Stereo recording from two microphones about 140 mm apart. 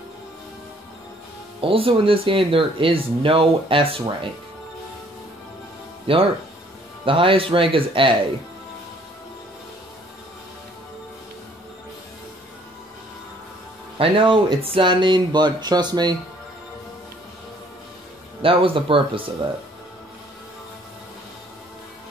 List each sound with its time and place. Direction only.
1.6 s speech: 40° right (ahead or behind)
6.1 s speech: 40° right (ahead or behind)
13.9 s speech: 40° right (ahead or behind)
18.4 s speech: 40° right (ahead or behind)